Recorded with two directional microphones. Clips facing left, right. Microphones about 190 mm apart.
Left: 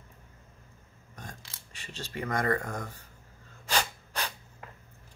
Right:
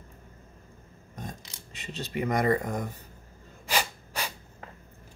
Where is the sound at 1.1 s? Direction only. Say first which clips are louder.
Right 6 dB; 20° right (ahead or behind).